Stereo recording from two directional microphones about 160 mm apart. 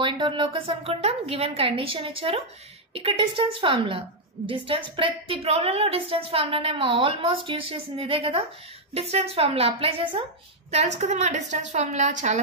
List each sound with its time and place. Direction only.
0.0 s a woman's voice: 30° right (ahead or behind); by 12.4 s 50° right (ahead or behind)